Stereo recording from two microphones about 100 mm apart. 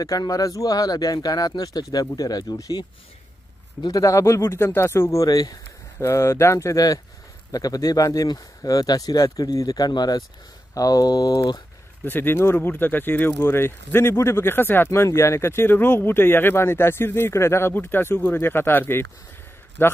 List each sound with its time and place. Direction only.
0.2 s speech: 35° left (ahead or behind)
5.9 s speech: 30° left (ahead or behind)
12.0 s speech: 20° left (ahead or behind)